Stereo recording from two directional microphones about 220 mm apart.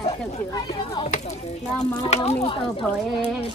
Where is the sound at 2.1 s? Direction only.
30° left (ahead or behind).